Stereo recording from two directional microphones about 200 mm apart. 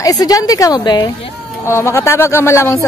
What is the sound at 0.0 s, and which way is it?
Speech, 20° left (ahead or behind).